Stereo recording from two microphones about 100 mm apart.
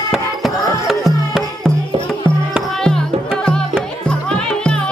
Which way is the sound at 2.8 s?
5° left (ahead or behind).